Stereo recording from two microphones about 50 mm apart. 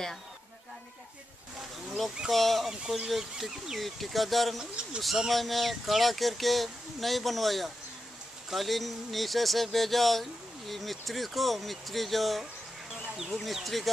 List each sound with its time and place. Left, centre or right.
2.2 s speech: centre
2.7 s speech: centre
4.6 s speech: centre
5.0 s speech: centre